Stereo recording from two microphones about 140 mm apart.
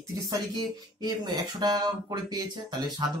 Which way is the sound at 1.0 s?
30° right (ahead or behind).